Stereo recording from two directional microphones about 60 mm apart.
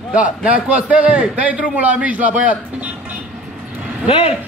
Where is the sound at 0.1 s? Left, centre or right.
Right.